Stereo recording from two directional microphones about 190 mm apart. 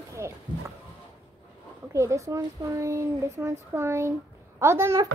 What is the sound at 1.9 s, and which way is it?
Speech, 15° right (ahead or behind).